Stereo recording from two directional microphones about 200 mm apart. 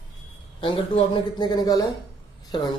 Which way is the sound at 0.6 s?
25° left (ahead or behind).